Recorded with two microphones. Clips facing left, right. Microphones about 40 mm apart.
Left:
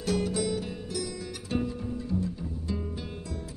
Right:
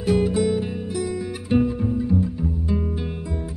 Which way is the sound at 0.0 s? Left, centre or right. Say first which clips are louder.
Right 8 dB; right.